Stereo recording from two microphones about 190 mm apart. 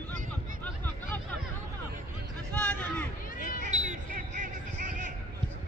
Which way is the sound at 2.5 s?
10° left (ahead or behind).